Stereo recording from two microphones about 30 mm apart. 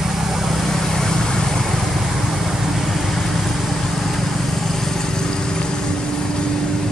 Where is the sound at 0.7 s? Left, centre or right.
Centre.